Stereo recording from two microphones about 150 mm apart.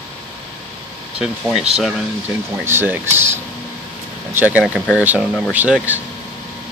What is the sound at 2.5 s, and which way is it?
Speech, 15° right (ahead or behind).